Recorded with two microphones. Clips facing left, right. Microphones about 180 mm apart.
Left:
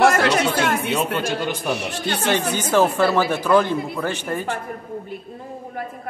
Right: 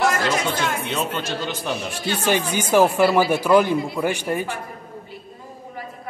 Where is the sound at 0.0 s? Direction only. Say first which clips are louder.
Left 5 dB; 50° left (ahead or behind).